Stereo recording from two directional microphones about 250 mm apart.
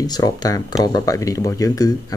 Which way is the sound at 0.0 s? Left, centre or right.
Centre.